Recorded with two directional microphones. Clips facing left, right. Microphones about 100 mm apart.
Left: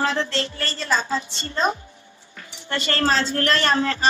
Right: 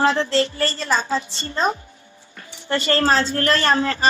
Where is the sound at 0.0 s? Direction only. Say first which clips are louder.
Right 5 dB; 35° right (ahead or behind).